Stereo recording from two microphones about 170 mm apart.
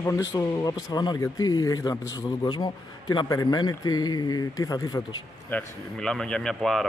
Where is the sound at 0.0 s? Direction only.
20° left (ahead or behind).